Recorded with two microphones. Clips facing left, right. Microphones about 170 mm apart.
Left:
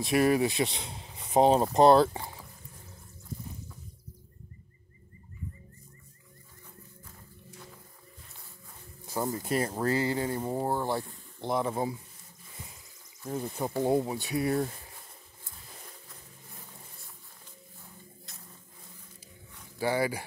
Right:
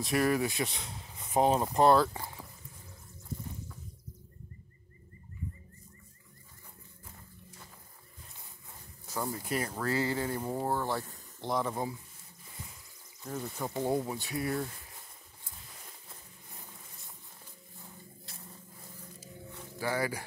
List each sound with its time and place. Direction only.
0.0 s speech: 20° left (ahead or behind)
9.1 s speech: 30° left (ahead or behind)
13.4 s speech: 15° left (ahead or behind)
19.8 s speech: 25° left (ahead or behind)